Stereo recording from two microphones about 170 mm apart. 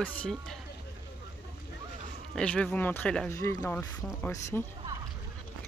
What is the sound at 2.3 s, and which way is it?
Speech, 5° left (ahead or behind).